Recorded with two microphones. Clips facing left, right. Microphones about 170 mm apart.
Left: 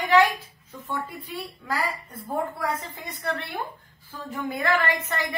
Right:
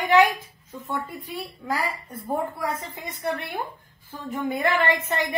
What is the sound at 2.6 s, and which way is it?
A woman's voice, 20° right (ahead or behind).